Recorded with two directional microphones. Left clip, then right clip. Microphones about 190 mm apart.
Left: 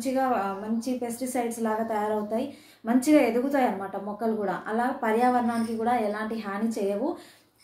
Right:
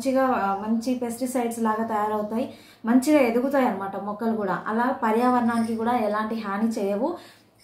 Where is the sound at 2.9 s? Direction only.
10° right (ahead or behind).